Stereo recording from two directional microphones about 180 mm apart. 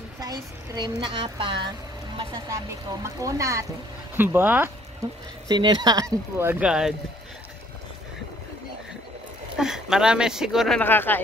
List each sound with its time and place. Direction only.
0.2 s a woman's voice: 20° right (ahead or behind)
2.9 s speech: 20° right (ahead or behind)
5.5 s speech: 25° right (ahead or behind); by 7.0 s 5° right (ahead or behind)
9.6 s speech: 5° right (ahead or behind)
10.8 s speech: 10° left (ahead or behind)